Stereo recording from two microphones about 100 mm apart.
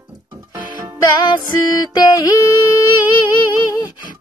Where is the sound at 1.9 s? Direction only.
40° left (ahead or behind).